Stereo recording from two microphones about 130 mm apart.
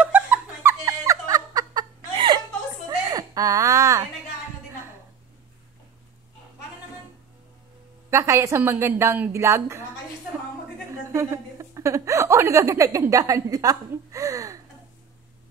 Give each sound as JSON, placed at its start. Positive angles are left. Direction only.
{"t": 0.0, "sound": "laughter", "side_deg": -10}
{"t": 3.1, "sound": "a sound", "side_deg": -30}
{"t": 8.1, "sound": "a woman's voice", "side_deg": -20}
{"t": 10.9, "sound": "a woman's voice", "side_deg": -20}